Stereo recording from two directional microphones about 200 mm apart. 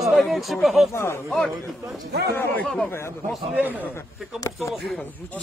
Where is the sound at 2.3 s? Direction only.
10° left (ahead or behind).